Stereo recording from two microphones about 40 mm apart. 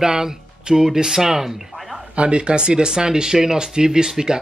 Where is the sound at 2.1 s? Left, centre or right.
Right.